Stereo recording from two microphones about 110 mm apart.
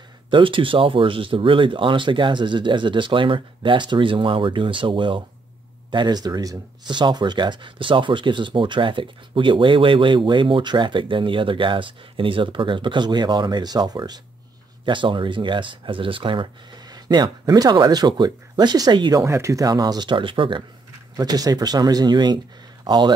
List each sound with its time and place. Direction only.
0.3 s speech: 50° right (ahead or behind)
16.9 s speech: 40° right (ahead or behind)
19.2 s speech: 25° right (ahead or behind); by 20.6 s 50° right (ahead or behind)
21.2 s speech: 35° right (ahead or behind)